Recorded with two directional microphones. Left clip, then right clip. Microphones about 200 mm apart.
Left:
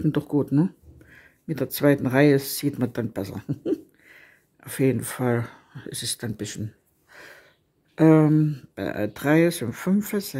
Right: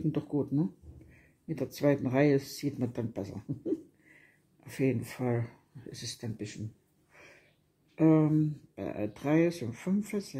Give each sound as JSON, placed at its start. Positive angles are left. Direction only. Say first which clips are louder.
{"t": 0.0, "sound": "speech", "louder": "left 8 dB", "side_deg": 35}
{"t": 7.9, "sound": "speech", "louder": "left 8 dB", "side_deg": 35}